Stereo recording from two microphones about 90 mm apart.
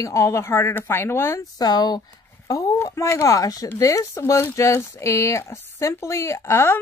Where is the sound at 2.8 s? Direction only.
35° left (ahead or behind).